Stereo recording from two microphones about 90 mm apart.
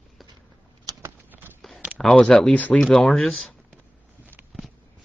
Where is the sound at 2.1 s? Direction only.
5° left (ahead or behind).